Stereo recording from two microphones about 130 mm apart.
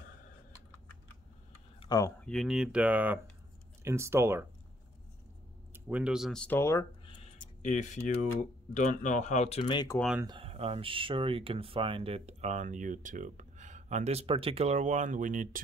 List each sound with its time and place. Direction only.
1.9 s speech: 25° left (ahead or behind)
2.2 s speech: centre (ahead or behind); by 4.5 s 20° right (ahead or behind)
5.7 s speech: 10° right (ahead or behind)
6.3 s speech: 10° left (ahead or behind)
7.6 s speech: 70° left (ahead or behind)
9.6 s speech: 35° left (ahead or behind)
10.4 s speech: 50° right (ahead or behind); by 15.6 s 90° right